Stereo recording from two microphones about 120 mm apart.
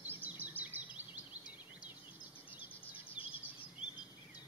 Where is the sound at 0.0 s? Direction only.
15° right (ahead or behind).